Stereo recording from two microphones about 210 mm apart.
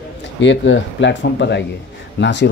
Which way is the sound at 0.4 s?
60° left (ahead or behind).